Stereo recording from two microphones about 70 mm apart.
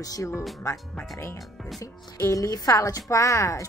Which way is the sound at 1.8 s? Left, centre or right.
Left.